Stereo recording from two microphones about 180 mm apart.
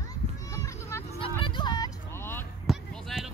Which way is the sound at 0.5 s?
15° left (ahead or behind).